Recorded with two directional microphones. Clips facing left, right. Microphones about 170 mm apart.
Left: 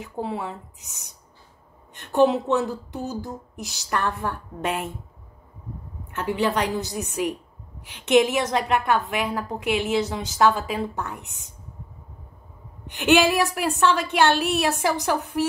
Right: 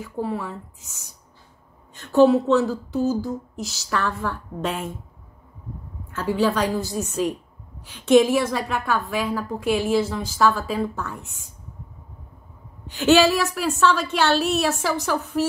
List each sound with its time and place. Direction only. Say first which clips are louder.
0.0 s a woman's voice: right 2 dB; 20° left (ahead or behind)
6.1 s a woman's voice: right 2 dB; 20° left (ahead or behind)
12.8 s a woman's voice: right 2 dB; 15° left (ahead or behind)